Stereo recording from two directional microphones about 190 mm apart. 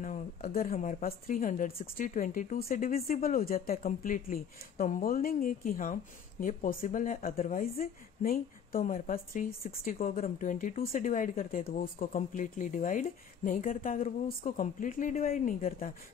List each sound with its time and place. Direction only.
0.0 s a woman's voice: 45° left (ahead or behind)